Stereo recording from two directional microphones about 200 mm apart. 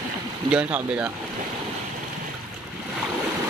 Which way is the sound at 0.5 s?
5° right (ahead or behind).